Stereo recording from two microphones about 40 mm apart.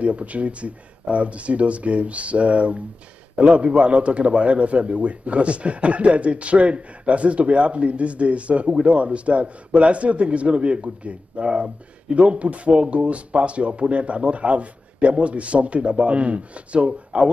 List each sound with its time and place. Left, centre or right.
0.0 s a man's voice: right